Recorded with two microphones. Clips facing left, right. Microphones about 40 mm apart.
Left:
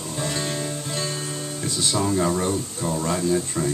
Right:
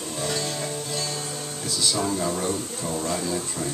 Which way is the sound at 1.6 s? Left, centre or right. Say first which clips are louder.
Left 2 dB; left.